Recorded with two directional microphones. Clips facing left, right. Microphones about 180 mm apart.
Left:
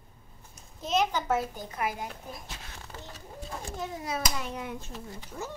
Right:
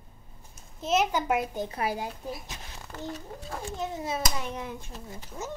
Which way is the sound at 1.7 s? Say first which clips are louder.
Left 1 dB; 30° right (ahead or behind).